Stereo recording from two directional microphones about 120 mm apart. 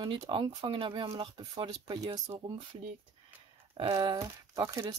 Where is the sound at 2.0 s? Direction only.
30° right (ahead or behind).